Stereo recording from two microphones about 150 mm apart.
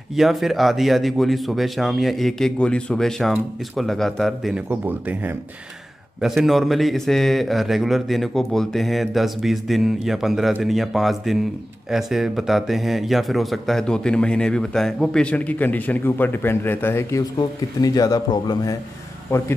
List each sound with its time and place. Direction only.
0.1 s speech: centre (ahead or behind)
6.2 s speech: centre (ahead or behind); by 19.5 s 15° left (ahead or behind)